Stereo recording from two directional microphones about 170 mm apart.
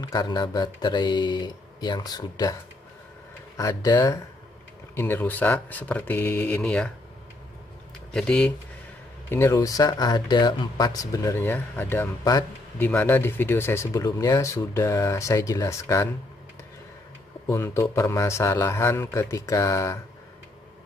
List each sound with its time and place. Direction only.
0.0 s speech: 20° left (ahead or behind)
3.5 s speech: 20° left (ahead or behind); by 6.9 s 5° left (ahead or behind)
8.1 s speech: 5° left (ahead or behind)
17.5 s speech: 15° left (ahead or behind)